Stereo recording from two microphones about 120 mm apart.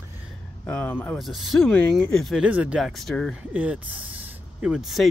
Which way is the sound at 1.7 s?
10° left (ahead or behind).